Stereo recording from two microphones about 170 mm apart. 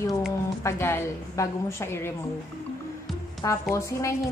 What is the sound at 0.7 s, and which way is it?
A woman's voice, 15° left (ahead or behind).